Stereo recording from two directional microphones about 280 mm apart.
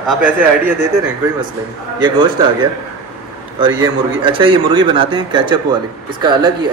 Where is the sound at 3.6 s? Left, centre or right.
Centre.